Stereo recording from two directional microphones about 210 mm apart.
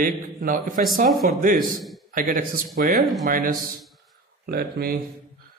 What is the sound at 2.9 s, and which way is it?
Speech, centre (ahead or behind).